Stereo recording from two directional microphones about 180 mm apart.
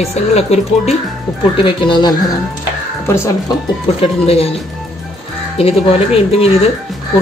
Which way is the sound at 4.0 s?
35° left (ahead or behind).